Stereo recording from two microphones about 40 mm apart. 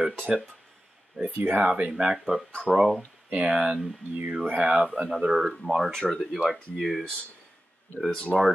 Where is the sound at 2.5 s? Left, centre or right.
Left.